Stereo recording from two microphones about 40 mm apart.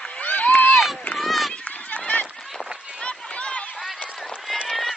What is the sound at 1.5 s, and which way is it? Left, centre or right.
Run, left.